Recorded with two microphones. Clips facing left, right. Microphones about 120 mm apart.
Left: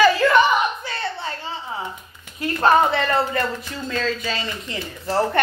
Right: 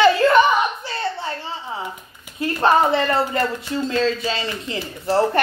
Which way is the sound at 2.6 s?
25° right (ahead or behind).